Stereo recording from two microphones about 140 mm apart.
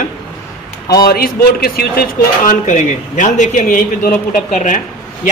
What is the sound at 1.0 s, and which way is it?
Speech, 90° left.